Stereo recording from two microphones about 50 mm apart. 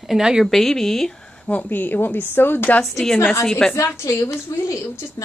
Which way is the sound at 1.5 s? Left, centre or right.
Left.